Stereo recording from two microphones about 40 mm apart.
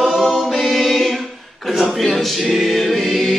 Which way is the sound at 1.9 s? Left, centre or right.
Centre.